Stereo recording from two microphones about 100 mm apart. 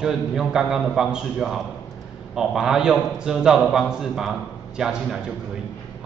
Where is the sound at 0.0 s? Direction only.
5° right (ahead or behind).